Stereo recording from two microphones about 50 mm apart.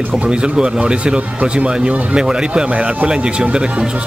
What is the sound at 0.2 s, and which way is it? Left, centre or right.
Speech, centre.